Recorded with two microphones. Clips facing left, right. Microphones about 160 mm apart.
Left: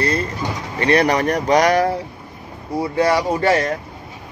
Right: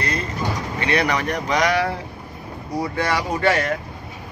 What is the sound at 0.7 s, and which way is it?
Speech, 40° left (ahead or behind).